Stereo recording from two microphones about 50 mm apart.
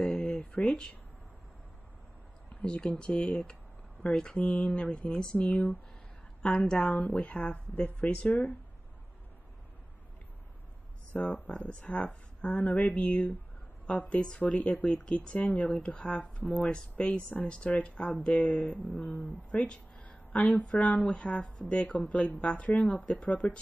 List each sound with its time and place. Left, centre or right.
0.0 s a sound: centre
2.6 s speech: centre
7.1 s speech: left
8.3 s speech: left
11.1 s speech: left
19.5 s a sound: left
20.6 s speech: left